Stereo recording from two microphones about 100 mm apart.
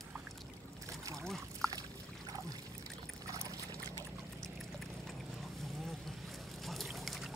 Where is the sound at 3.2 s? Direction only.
35° right (ahead or behind).